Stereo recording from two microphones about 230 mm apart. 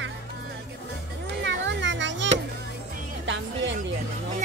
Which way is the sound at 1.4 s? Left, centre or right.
Right.